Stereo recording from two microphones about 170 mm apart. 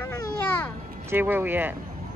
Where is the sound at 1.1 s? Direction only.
10° right (ahead or behind).